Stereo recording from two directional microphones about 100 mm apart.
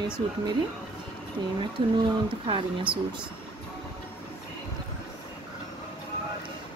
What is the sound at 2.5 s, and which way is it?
Speech, 55° right (ahead or behind).